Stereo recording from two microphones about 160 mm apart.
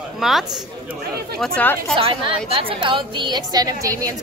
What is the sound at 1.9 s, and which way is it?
A woman's voice, 35° right (ahead or behind).